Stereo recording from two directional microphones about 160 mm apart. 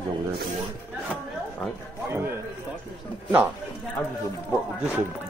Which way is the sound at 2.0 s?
15° right (ahead or behind).